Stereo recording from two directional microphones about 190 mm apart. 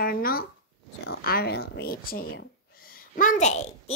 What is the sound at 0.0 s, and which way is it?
Speech, 50° left (ahead or behind).